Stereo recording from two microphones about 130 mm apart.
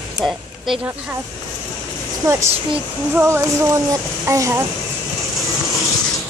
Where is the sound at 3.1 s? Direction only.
20° right (ahead or behind).